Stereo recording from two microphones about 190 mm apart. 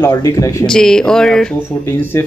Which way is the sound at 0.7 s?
5° left (ahead or behind).